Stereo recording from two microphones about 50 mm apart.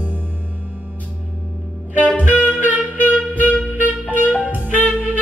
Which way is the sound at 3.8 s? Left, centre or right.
Right.